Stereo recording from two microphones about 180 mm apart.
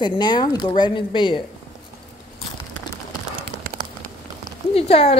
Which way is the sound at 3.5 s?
80° right.